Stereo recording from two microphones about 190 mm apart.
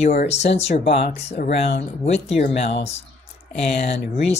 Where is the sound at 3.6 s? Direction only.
35° left (ahead or behind).